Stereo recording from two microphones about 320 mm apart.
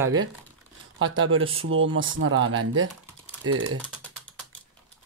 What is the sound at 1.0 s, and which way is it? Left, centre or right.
Speech, right.